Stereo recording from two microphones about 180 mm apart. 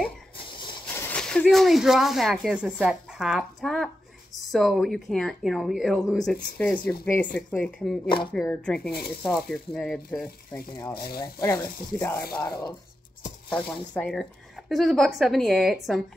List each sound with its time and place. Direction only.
0.9 s a woman's voice: 10° left (ahead or behind)
13.9 s a woman's voice: 5° left (ahead or behind)